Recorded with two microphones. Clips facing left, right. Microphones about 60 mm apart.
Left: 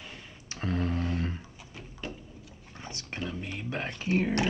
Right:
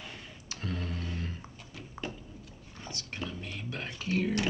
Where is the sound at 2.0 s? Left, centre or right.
Right.